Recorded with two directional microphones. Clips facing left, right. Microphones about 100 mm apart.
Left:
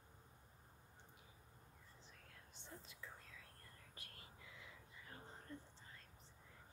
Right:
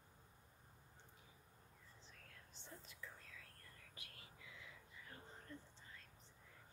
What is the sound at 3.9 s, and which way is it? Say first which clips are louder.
Whispering: left 1 dB; 40° left (ahead or behind).